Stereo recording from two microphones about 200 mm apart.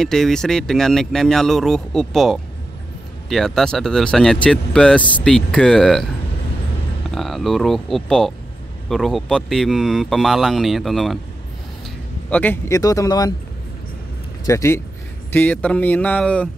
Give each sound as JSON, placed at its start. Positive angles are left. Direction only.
{"t": 0.0, "sound": "speech", "side_deg": 0}
{"t": 7.1, "sound": "speech", "side_deg": 0}
{"t": 12.3, "sound": "speech", "side_deg": 10}
{"t": 14.4, "sound": "speech", "side_deg": 15}